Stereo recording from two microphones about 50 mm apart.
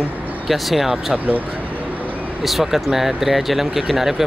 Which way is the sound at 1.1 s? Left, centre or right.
Right.